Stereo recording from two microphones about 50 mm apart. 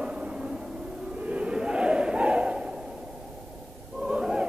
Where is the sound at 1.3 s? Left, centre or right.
Right.